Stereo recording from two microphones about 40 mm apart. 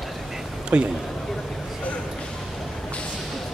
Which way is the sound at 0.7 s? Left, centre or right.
Right.